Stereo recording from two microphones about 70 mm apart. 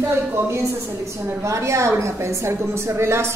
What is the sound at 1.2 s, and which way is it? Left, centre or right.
A woman's voice, right.